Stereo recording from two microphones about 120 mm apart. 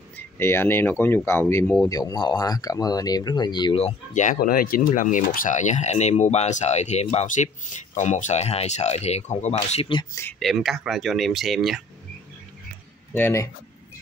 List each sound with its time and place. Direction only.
0.1 s speech: 20° left (ahead or behind)
1.9 s speech: 30° left (ahead or behind)
4.1 s speech: 90° left; by 9.6 s 65° left (ahead or behind)
9.6 s speech: 55° left (ahead or behind)
10.4 s speech: centre (ahead or behind)
13.1 s speech: 20° left (ahead or behind)